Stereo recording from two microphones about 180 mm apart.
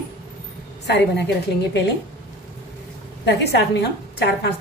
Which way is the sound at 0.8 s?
70° left (ahead or behind).